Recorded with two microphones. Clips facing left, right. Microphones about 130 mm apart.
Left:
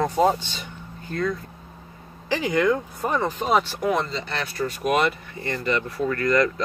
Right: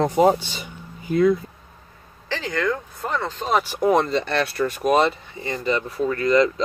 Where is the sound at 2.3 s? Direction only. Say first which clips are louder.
Left 3 dB; 15° left (ahead or behind).